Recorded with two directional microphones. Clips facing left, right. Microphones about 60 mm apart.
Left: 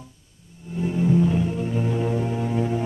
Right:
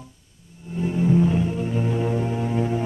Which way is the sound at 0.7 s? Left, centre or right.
Right.